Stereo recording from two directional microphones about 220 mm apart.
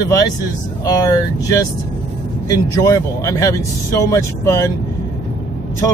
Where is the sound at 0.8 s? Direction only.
15° left (ahead or behind).